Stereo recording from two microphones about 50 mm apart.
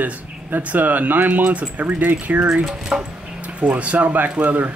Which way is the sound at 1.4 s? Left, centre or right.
Right.